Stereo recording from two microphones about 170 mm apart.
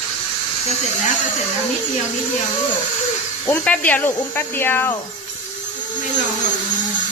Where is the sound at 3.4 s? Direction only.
10° left (ahead or behind).